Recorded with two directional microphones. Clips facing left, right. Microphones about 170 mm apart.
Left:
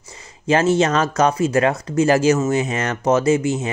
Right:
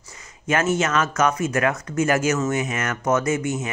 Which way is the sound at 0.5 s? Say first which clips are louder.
Left 5 dB; 30° left (ahead or behind).